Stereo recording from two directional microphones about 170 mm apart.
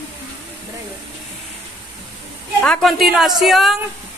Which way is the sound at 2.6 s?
5° left (ahead or behind).